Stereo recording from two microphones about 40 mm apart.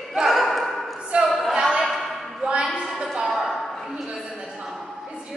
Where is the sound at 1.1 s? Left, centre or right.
Right.